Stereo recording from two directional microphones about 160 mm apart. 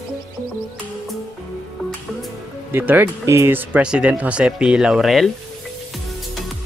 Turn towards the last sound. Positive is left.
turn(degrees=0)  # may be behind; listen again after turning